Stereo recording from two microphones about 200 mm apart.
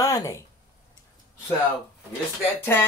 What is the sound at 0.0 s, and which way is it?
Speech, 15° left (ahead or behind).